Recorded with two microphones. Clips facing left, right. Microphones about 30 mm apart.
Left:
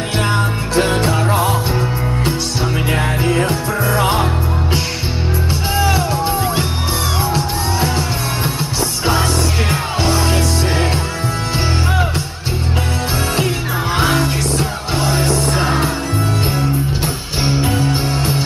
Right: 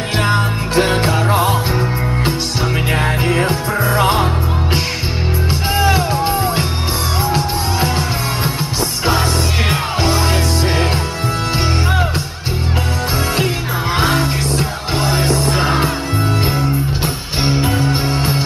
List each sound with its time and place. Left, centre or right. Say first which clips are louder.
0.2 s music: right 2 dB; centre
5.8 s music: right 1 dB; right
9.7 s music: right 1 dB; centre
13.9 s music: even; centre
17.4 s music: right 1 dB; centre